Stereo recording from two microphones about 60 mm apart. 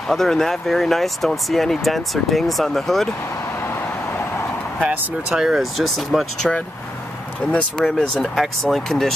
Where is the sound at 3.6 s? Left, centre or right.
Left.